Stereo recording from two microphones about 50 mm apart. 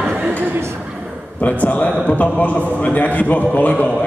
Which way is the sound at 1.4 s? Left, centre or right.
Left.